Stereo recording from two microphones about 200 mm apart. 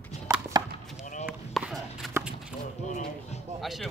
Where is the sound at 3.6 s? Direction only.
Centre (ahead or behind).